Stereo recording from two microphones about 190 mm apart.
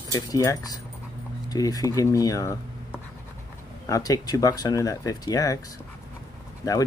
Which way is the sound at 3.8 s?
15° left (ahead or behind).